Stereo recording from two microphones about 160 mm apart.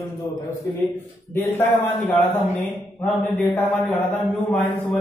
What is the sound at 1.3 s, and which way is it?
Speech, 15° left (ahead or behind).